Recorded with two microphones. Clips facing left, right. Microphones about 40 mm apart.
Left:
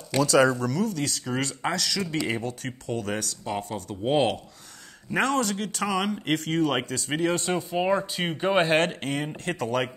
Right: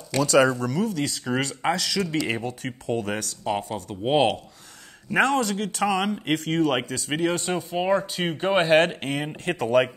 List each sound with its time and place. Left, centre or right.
0.2 s speech: centre